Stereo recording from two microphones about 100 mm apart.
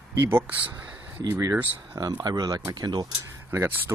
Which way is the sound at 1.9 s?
40° right (ahead or behind).